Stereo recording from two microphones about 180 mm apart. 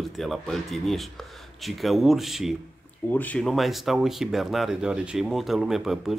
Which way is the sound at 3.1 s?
10° left (ahead or behind).